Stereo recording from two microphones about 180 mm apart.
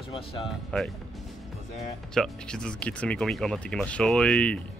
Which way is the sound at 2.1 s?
5° left (ahead or behind).